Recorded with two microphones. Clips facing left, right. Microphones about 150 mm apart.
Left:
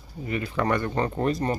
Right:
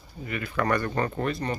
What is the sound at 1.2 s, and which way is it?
Speech, 40° left (ahead or behind).